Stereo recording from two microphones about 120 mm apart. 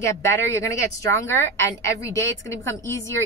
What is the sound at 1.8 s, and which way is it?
A woman's voice, 25° left (ahead or behind).